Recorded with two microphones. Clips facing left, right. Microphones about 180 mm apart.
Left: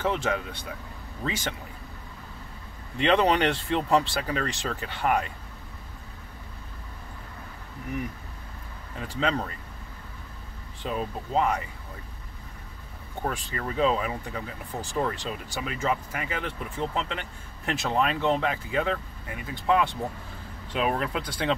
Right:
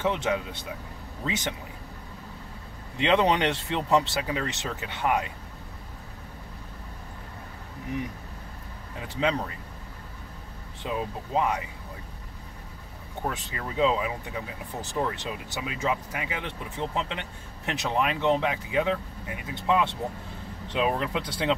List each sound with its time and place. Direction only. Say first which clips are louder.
0.0 s speech: even; 20° right (ahead or behind)
3.0 s speech: left 1 dB; 20° right (ahead or behind)
9.0 s speech: right 1 dB; 15° right (ahead or behind)
10.8 s speech: even; 15° right (ahead or behind)
13.4 s speech: right 1 dB; 20° right (ahead or behind)